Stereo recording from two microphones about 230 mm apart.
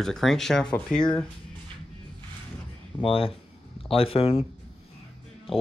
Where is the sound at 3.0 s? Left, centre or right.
Left.